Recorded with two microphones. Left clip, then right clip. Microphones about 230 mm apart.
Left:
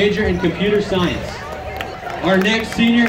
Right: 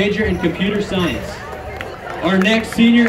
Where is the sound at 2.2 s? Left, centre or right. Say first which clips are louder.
Even; right.